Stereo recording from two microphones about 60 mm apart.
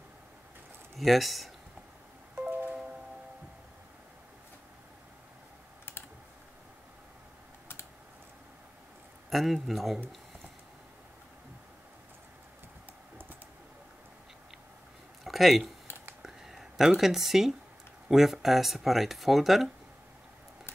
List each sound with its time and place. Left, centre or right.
0.9 s speech: centre
2.4 s music: right
9.3 s speech: centre
15.2 s speech: centre
16.2 s a sound: centre
18.0 s speech: centre